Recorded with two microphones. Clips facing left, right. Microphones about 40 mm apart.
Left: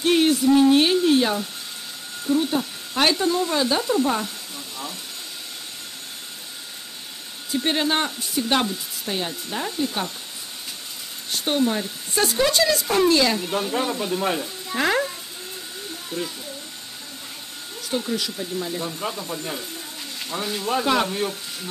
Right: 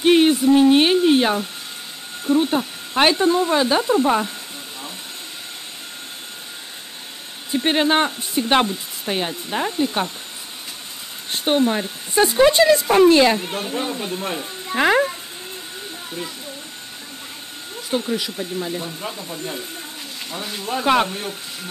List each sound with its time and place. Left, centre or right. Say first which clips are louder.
0.0 s a sound: right 4 dB; right
2.2 s speech: right 3 dB; right
7.5 s speech: right 4 dB; right
11.2 s speech: right 4 dB; right
13.5 s speech: left 1 dB; centre
17.8 s speech: right 3 dB; centre
18.9 s speech: left 1 dB; centre
20.8 s speech: right 6 dB; right
21.1 s speech: left 3 dB; centre